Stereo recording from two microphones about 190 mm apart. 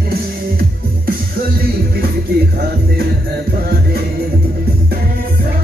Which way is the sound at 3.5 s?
50° right (ahead or behind).